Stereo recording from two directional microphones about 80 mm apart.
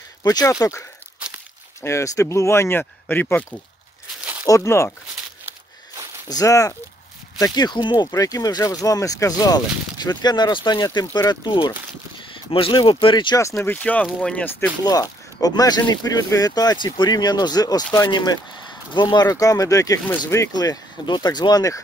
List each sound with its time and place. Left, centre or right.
0.2 s speech: left
0.5 s speech: left
2.8 s speech: left
4.5 s speech: left
6.2 s speech: left
7.3 s speech: left
8.2 s speech: left
13.4 s speech: left
13.7 s speech: centre
14.9 s speech: left
19.3 s speech: left